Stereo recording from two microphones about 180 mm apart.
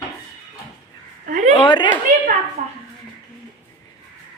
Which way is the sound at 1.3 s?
45° right (ahead or behind).